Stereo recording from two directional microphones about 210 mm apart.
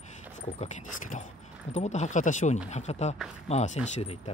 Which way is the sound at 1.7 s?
35° left (ahead or behind).